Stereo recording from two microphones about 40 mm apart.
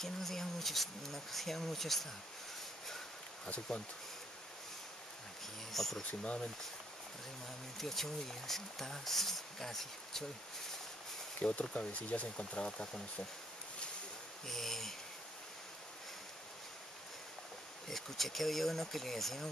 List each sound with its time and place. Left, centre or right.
0.0 s speech: centre
3.4 s speech: left
5.7 s speech: centre
6.0 s speech: left
7.7 s speech: centre
11.7 s speech: left
14.5 s speech: centre
17.8 s speech: centre